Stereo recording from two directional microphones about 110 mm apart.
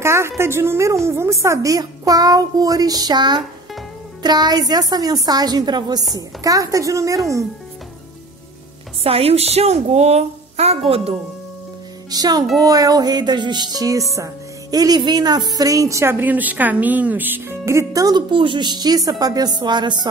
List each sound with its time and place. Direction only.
0.0 s a sound: 25° right (ahead or behind)
0.4 s a woman's voice: 20° right (ahead or behind)
9.0 s a woman's voice: 65° right (ahead or behind)
12.1 s speech: 35° right (ahead or behind)
18.3 s speech: 50° right (ahead or behind)